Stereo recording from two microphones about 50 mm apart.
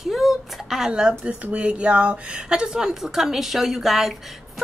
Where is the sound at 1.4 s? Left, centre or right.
Right.